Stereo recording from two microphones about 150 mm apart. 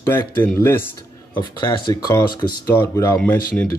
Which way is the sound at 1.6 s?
30° left (ahead or behind).